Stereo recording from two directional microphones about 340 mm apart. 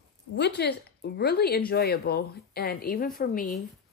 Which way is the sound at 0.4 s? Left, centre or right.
Left.